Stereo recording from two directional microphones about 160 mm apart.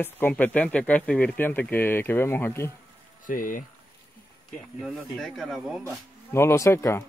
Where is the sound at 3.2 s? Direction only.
55° left (ahead or behind).